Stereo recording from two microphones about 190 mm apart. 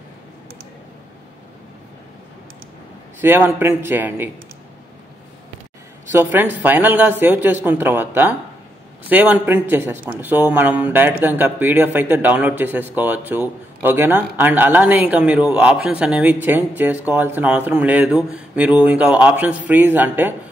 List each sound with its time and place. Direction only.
3.2 s speech: 10° right (ahead or behind)
6.1 s speech: 10° right (ahead or behind)